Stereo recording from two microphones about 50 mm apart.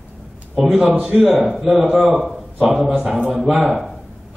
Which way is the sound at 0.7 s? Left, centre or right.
Centre.